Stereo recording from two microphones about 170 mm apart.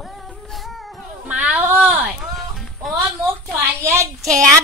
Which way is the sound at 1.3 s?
5° right (ahead or behind).